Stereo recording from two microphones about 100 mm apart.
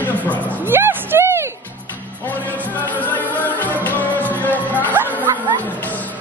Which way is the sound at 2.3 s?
15° left (ahead or behind).